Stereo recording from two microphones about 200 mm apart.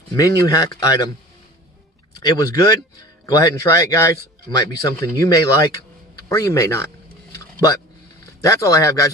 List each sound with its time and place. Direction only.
0.1 s speech: 20° left (ahead or behind)
2.2 s speech: 20° left (ahead or behind)
7.3 s a sound: 15° left (ahead or behind)
8.4 s speech: 15° left (ahead or behind)